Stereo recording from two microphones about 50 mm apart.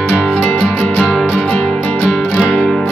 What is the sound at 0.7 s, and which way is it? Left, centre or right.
Music, left.